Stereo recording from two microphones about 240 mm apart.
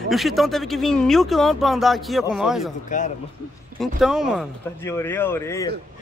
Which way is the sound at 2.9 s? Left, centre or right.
Left.